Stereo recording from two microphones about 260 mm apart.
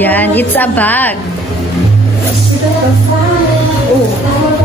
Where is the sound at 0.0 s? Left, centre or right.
Centre.